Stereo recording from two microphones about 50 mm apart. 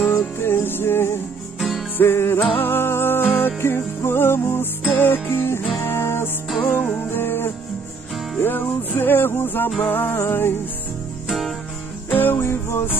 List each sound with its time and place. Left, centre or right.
0.4 s music: left
1.6 s music: centre
2.0 s music: left
6.6 s music: left
7.1 s music: left
11.2 s music: centre
12.1 s music: left